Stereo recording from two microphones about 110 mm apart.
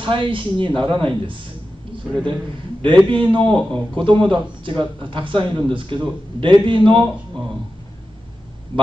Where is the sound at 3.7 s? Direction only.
50° right (ahead or behind).